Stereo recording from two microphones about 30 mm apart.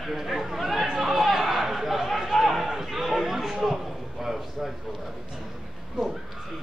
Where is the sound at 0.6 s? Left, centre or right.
Centre.